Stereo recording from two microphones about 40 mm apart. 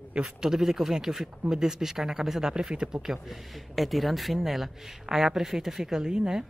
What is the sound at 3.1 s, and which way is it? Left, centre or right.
A man's voice, centre.